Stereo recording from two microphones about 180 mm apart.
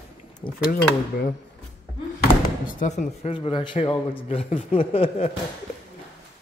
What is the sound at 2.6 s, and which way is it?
Speech, 45° left (ahead or behind).